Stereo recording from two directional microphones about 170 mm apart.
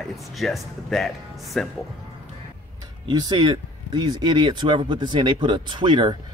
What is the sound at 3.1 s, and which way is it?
Speech, 25° right (ahead or behind).